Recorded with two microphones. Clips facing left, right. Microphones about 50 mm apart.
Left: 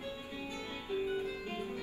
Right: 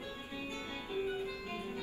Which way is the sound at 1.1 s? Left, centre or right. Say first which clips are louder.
Left 2 dB; left.